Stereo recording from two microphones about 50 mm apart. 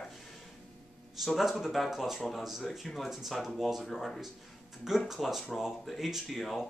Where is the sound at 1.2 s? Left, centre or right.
Centre.